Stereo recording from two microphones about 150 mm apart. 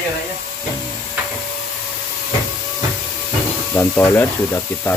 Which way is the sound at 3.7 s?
15° left (ahead or behind).